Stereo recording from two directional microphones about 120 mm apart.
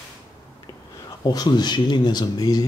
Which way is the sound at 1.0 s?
35° left (ahead or behind).